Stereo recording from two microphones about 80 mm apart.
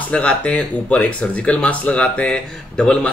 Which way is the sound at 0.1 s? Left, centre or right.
Centre.